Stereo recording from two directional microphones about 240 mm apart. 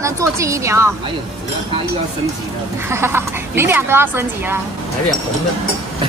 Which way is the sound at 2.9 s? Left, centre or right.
Centre.